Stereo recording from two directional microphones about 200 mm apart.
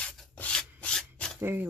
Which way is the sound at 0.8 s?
5° left (ahead or behind).